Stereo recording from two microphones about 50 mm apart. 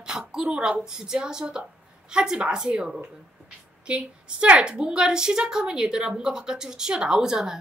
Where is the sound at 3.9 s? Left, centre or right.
Right.